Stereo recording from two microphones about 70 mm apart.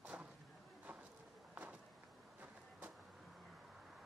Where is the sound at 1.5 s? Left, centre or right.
Right.